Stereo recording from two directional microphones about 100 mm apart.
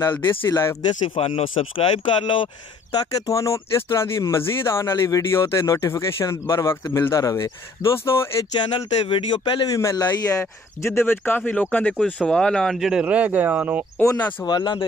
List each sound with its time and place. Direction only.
0.5 s speech: 25° left (ahead or behind)
0.8 s speech: 70° left (ahead or behind); by 3.0 s 55° left (ahead or behind)
3.3 s speech: 30° left (ahead or behind)
8.5 s speech: 50° left (ahead or behind)
9.7 s a man's voice: 35° left (ahead or behind); by 12.7 s 10° left (ahead or behind)
12.7 s a man's voice: 5° right (ahead or behind)
13.0 s speech: 15° right (ahead or behind)
14.4 s speech: 45° left (ahead or behind)